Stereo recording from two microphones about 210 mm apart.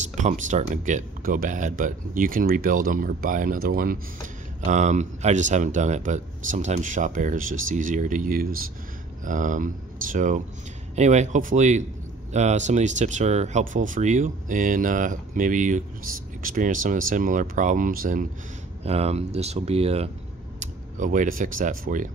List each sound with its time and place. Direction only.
0.2 s speech: 35° right (ahead or behind)
18.9 s speech: 30° right (ahead or behind)